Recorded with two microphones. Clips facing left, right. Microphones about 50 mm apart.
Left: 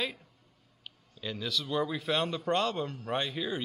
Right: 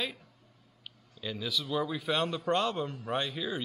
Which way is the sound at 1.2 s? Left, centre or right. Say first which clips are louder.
Even; centre.